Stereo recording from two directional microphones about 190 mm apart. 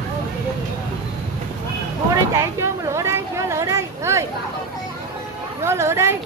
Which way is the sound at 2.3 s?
15° right (ahead or behind).